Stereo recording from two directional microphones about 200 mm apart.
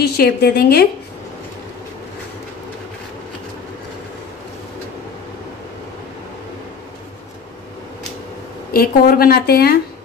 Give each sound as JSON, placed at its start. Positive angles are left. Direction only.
{"t": 0.0, "sound": "a woman's voice", "side_deg": 55}
{"t": 8.7, "sound": "a woman's voice", "side_deg": 50}